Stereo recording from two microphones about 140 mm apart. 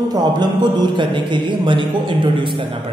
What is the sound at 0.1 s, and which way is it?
A man's voice, 30° right (ahead or behind).